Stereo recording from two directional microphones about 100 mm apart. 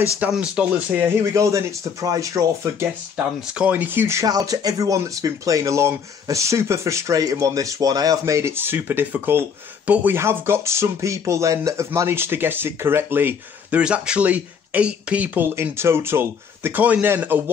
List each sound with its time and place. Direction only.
0.3 s speech: 10° right (ahead or behind)
0.9 s speech: 30° right (ahead or behind)
3.5 s speech: 15° right (ahead or behind)